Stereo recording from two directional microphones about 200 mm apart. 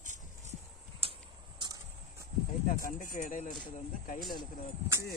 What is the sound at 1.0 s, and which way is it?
Horse, 30° right (ahead or behind).